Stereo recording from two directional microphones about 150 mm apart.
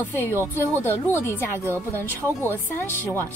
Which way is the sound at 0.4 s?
15° left (ahead or behind).